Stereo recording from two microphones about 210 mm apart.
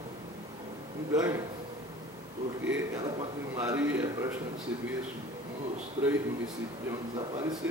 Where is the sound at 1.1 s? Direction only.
15° right (ahead or behind).